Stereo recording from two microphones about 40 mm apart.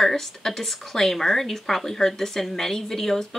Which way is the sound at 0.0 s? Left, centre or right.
Centre.